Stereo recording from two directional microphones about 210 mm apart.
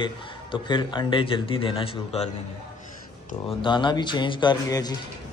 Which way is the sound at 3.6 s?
20° left (ahead or behind).